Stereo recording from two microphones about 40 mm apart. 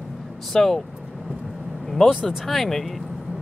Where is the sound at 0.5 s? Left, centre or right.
Centre.